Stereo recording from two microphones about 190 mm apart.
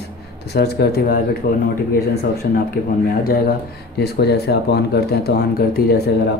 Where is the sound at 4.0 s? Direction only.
60° left (ahead or behind).